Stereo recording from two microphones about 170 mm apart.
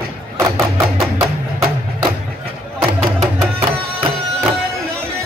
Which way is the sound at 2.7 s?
Centre (ahead or behind).